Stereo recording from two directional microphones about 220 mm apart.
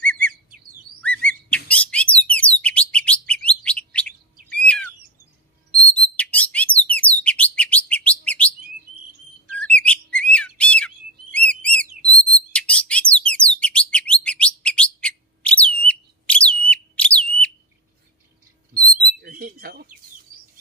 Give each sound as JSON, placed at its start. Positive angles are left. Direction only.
{"t": 0.0, "sound": "chirp", "side_deg": 5}
{"t": 1.7, "sound": "bird", "side_deg": 5}
{"t": 9.8, "sound": "bird", "side_deg": 5}
{"t": 11.8, "sound": "bird", "side_deg": -40}
{"t": 12.1, "sound": "bird", "side_deg": 5}
{"t": 18.8, "sound": "a sound", "side_deg": -40}